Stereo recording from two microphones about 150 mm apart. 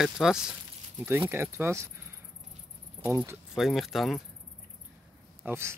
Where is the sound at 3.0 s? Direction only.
15° right (ahead or behind).